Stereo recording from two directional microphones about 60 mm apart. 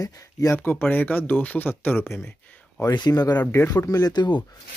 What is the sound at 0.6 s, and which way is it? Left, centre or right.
Speech, left.